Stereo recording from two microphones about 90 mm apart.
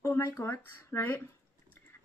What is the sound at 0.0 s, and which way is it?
Speech, 30° left (ahead or behind).